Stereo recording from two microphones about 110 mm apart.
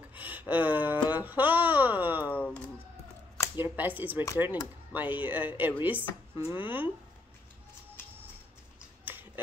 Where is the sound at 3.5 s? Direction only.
15° right (ahead or behind).